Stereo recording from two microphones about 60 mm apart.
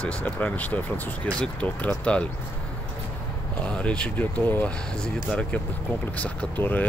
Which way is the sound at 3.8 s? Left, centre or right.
Centre.